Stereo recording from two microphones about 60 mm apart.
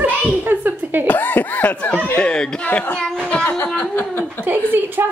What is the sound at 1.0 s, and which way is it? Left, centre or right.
Snicker, left.